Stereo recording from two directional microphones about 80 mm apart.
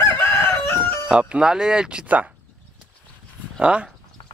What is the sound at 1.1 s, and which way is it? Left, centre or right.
Speech, centre.